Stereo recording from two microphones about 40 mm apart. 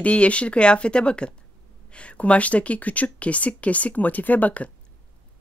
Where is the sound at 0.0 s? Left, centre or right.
Left.